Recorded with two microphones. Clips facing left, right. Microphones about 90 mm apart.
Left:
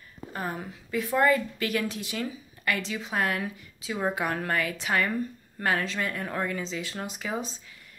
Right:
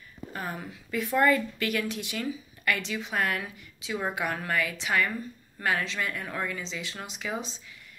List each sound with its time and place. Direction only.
0.3 s speech: 25° left (ahead or behind)